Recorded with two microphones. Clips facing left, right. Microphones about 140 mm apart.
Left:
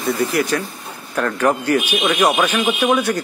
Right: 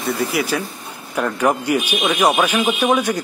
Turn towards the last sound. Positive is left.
turn(degrees=-10)  # may be behind; listen again after turning